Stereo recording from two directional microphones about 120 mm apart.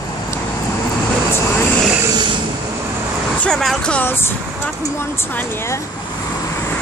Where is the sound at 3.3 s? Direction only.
5° left (ahead or behind).